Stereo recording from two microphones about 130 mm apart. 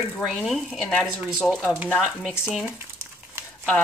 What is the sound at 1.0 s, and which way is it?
Speech, 10° right (ahead or behind).